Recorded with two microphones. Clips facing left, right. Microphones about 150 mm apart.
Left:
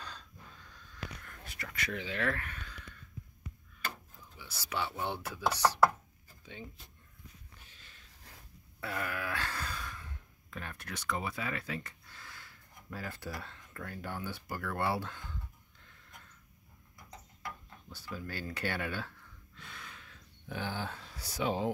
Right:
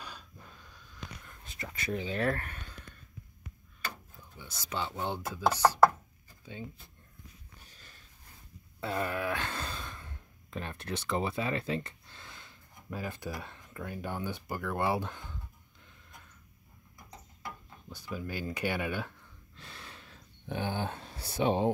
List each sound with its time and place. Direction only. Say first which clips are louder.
0.0 s snort: right 1 dB; 10° right (ahead or behind)
1.2 s a sound: right 2 dB; 20° right (ahead or behind)
2.0 s speech: right 4 dB; 35° right (ahead or behind)
4.6 s speech: right 1 dB; 20° right (ahead or behind)
6.4 s speech: right 4 dB; 20° right (ahead or behind)
7.6 s a sound: right 3 dB; 40° right (ahead or behind)
8.8 s a sound: right 5 dB; 25° right (ahead or behind)
10.5 s speech: right 6 dB; 25° right (ahead or behind)
17.8 s speech: right 4 dB; 15° right (ahead or behind)
19.5 s gasp: right 1 dB; 30° right (ahead or behind)
21.1 s speech: right 5 dB; 25° right (ahead or behind)